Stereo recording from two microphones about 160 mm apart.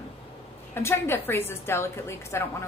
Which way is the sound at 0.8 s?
15° left (ahead or behind).